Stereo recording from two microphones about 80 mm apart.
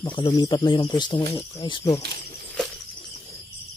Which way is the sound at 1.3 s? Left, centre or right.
Left.